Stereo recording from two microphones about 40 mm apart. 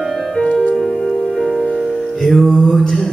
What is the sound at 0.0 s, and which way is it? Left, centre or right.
Music, centre.